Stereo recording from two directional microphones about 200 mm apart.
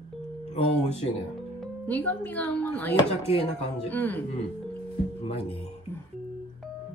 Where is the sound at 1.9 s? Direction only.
10° left (ahead or behind).